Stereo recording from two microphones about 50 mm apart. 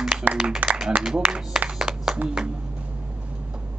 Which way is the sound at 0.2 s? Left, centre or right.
Right.